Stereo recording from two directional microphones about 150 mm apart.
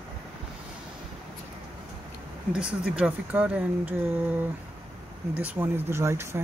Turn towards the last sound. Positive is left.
turn(degrees=-15)  # may be behind; listen again after turning